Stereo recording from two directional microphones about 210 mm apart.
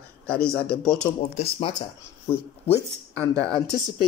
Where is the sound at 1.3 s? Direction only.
25° left (ahead or behind).